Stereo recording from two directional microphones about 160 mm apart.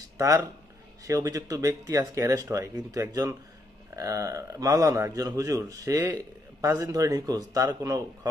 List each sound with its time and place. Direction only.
0.2 s a man's voice: 20° right (ahead or behind)